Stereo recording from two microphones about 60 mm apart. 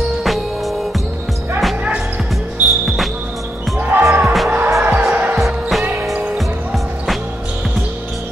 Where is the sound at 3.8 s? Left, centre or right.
Right.